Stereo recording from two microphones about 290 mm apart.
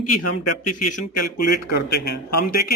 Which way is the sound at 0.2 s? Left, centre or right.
Left.